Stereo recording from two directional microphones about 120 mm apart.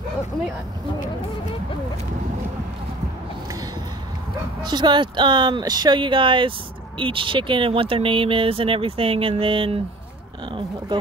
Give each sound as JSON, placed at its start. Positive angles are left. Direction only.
{"t": 4.6, "sound": "speech", "side_deg": -35}